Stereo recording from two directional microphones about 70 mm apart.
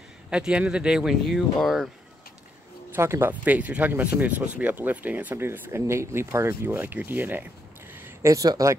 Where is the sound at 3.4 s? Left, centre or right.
Right.